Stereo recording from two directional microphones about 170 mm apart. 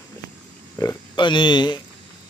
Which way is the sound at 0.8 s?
25° left (ahead or behind).